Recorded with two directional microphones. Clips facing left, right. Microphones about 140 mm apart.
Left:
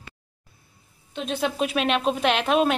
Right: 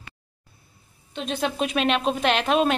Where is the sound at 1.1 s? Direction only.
10° left (ahead or behind).